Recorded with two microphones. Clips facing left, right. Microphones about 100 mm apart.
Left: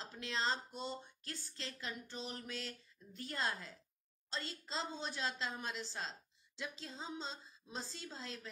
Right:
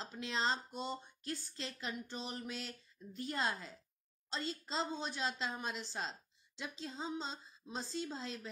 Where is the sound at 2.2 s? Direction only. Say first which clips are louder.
Right 2 dB; 20° right (ahead or behind).